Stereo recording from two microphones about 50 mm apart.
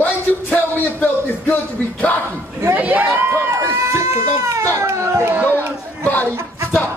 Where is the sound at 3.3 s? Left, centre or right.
Right.